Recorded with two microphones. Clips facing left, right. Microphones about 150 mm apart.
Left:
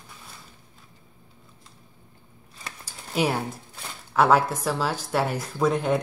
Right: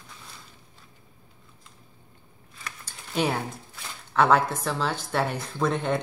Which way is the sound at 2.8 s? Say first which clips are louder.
Left 2 dB; 10° left (ahead or behind).